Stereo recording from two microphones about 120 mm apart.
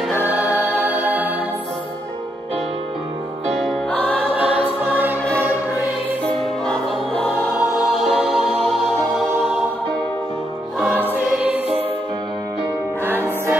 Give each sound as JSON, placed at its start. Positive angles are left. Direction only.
{"t": 0.3, "sound": "music", "side_deg": -10}
{"t": 4.1, "sound": "choir", "side_deg": -15}
{"t": 4.8, "sound": "music", "side_deg": -15}
{"t": 6.6, "sound": "music", "side_deg": 5}
{"t": 10.8, "sound": "choir", "side_deg": -15}
{"t": 13.0, "sound": "music", "side_deg": -20}